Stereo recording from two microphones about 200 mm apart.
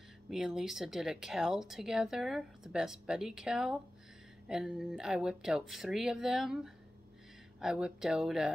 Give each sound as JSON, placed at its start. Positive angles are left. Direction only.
{"t": 0.3, "sound": "speech", "side_deg": 0}